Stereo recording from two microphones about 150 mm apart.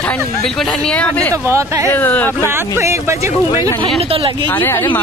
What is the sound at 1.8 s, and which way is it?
Speech, 10° left (ahead or behind).